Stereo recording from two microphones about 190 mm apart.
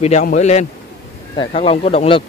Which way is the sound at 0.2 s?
40° left (ahead or behind).